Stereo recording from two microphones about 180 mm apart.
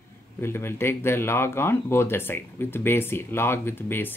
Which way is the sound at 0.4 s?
15° left (ahead or behind).